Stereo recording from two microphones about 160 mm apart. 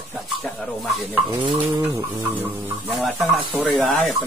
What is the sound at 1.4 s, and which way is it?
Bird, 30° right (ahead or behind).